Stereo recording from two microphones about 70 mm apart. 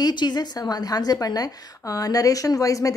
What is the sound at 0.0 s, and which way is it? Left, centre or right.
A woman's voice, left.